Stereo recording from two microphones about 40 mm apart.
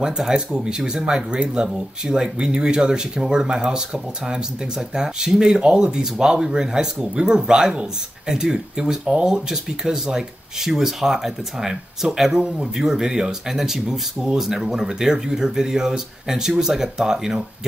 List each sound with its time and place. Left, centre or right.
0.0 s speech: centre